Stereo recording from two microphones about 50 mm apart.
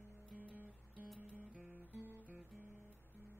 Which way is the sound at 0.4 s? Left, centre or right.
Right.